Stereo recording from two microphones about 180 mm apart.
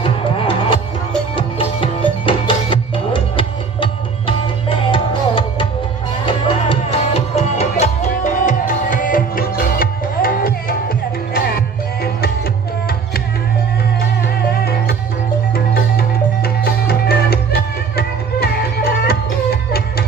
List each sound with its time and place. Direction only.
0.0 s music: 30° left (ahead or behind); by 12.3 s 60° left (ahead or behind)
15.5 s music: 60° left (ahead or behind)